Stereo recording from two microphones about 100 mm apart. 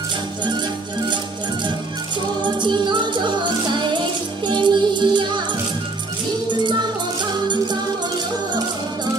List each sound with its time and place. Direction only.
2.4 s music: 50° right (ahead or behind)
6.6 s music: 50° right (ahead or behind)